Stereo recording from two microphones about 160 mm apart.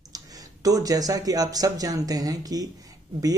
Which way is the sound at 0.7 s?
20° right (ahead or behind).